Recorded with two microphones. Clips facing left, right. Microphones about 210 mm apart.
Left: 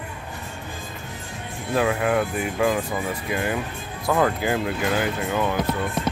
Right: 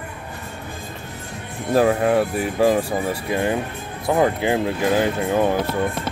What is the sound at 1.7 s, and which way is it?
Speech, 35° right (ahead or behind).